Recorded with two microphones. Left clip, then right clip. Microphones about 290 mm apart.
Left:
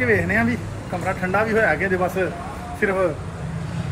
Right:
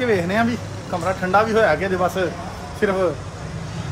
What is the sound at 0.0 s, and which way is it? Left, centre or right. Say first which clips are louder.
Speech: even; centre.